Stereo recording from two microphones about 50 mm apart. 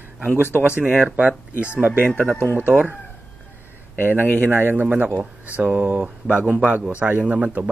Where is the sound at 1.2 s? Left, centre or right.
Right.